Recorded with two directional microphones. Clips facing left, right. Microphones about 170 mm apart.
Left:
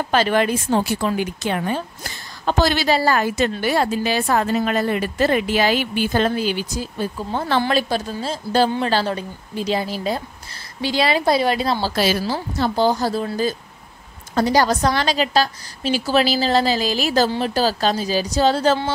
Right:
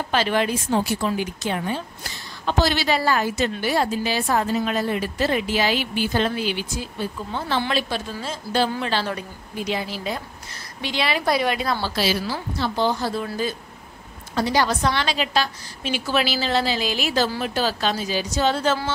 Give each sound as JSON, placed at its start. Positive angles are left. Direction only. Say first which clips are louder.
{"t": 0.1, "sound": "a woman's voice", "louder": "left 3 dB", "side_deg": 50}
{"t": 2.4, "sound": "a woman's voice", "louder": "left 3 dB", "side_deg": 50}
{"t": 2.9, "sound": "a woman's voice", "louder": "left 3 dB", "side_deg": 35}
{"t": 3.2, "sound": "a woman's voice", "louder": "left 3 dB", "side_deg": 55}
{"t": 11.9, "sound": "a woman's voice", "louder": "left 4 dB", "side_deg": 50}